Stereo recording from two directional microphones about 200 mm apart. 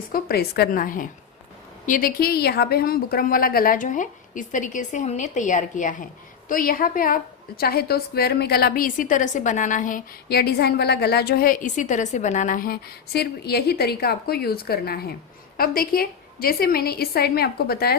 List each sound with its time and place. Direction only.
0.1 s a woman's voice: 50° left (ahead or behind)